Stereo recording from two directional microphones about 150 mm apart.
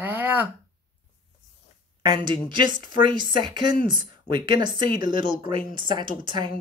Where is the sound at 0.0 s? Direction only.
10° right (ahead or behind).